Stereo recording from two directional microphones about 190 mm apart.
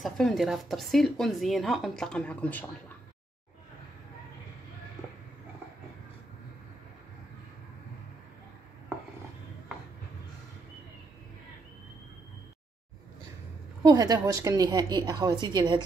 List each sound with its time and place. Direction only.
0.0 s speech: centre (ahead or behind)
13.8 s a woman's voice: 20° right (ahead or behind)